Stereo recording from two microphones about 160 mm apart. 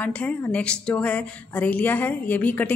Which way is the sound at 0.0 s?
10° left (ahead or behind).